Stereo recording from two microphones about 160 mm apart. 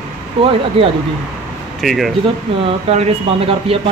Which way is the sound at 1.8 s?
Centre (ahead or behind).